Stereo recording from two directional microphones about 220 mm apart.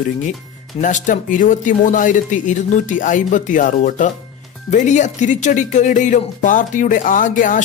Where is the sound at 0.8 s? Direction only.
35° left (ahead or behind).